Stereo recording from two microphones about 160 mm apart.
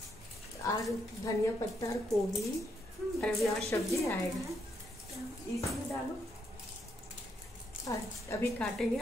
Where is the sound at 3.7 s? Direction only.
20° left (ahead or behind).